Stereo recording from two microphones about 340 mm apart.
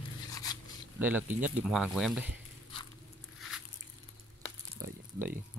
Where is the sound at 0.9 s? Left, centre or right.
Centre.